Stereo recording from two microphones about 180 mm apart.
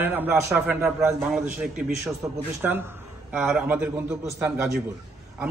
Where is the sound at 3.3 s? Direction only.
5° right (ahead or behind).